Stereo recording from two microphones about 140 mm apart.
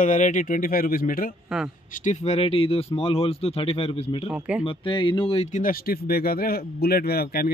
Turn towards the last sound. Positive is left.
turn(degrees=90)